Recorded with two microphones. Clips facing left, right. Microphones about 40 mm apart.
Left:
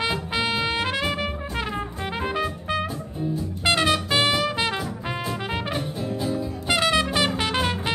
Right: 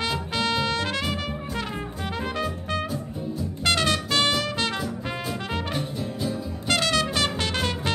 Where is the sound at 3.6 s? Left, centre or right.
Centre.